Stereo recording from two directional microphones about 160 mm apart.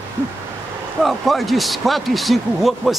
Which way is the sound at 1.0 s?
Centre (ahead or behind).